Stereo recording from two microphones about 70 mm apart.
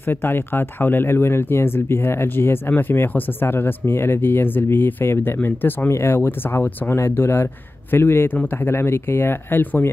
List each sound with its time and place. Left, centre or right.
0.1 s speech: left